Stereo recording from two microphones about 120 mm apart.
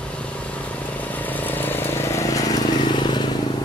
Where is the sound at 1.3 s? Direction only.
15° left (ahead or behind); by 3.3 s 40° left (ahead or behind).